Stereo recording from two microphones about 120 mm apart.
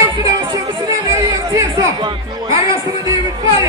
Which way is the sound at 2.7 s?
25° right (ahead or behind).